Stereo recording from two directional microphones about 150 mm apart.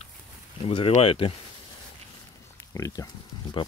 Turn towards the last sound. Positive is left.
turn(degrees=30)  # may be behind; listen again after turning